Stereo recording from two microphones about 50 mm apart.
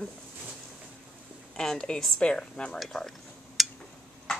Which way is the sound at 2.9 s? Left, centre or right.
Centre.